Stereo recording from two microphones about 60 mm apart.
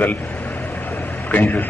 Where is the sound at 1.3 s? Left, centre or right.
Left.